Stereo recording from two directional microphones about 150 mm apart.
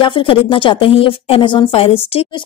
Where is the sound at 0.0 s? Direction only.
35° left (ahead or behind).